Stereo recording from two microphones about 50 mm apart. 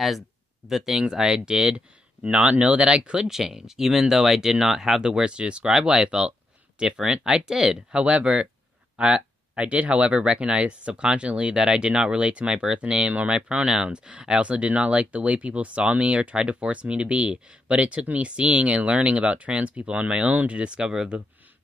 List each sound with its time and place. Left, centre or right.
0.7 s speech: centre
3.3 s speech: centre
7.9 s speech: right